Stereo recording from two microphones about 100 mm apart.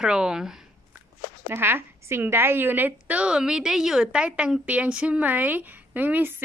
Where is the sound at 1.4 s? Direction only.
20° right (ahead or behind).